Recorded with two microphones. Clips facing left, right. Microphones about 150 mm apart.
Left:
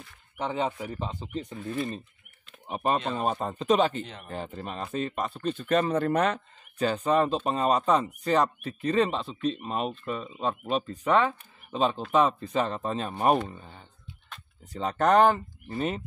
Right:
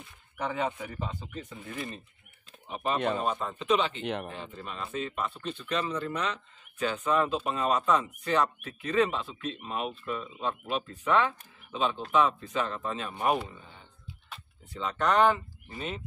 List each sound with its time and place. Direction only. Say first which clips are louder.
0.4 s speech: left 2 dB; 25° left (ahead or behind)
2.7 s speech: left 1 dB; 40° left (ahead or behind)
4.0 s speech: right 7 dB; 70° right (ahead or behind)
4.3 s speech: left 5 dB; 45° left (ahead or behind)
6.8 s speech: left 3 dB; 40° left (ahead or behind)